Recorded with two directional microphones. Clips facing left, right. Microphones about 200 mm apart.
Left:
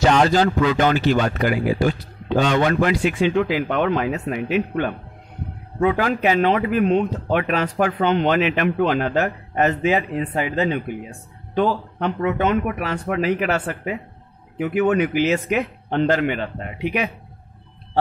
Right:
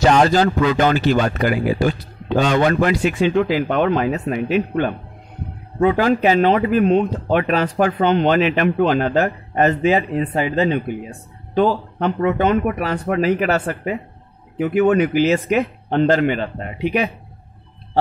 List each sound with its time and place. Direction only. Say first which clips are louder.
0.0 s speech: right 2 dB; 40° right (ahead or behind)